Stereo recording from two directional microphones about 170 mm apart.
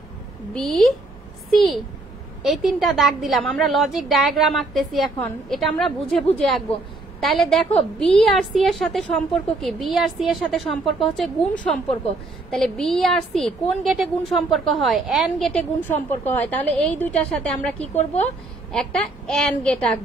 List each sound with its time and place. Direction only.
0.6 s a woman's voice: centre (ahead or behind)
17.9 s a woman's voice: 40° left (ahead or behind)
18.7 s a woman's voice: 5° left (ahead or behind)